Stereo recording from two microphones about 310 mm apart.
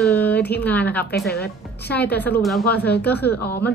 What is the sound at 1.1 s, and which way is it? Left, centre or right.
Speech, left.